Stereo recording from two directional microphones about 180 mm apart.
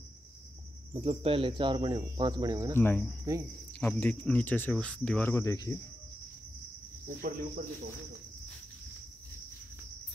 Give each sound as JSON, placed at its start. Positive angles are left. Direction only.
{"t": 0.9, "sound": "speech", "side_deg": -30}
{"t": 2.7, "sound": "speech", "side_deg": 10}
{"t": 7.2, "sound": "cricket", "side_deg": -50}